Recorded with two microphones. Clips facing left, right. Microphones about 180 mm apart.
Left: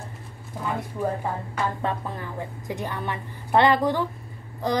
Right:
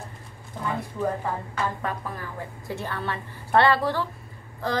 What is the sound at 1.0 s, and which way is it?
Speech, 10° left (ahead or behind).